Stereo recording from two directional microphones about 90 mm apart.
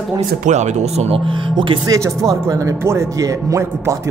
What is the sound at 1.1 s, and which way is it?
Speech, 70° right (ahead or behind).